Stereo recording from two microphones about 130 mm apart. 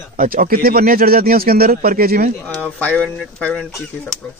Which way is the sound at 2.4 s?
10° left (ahead or behind).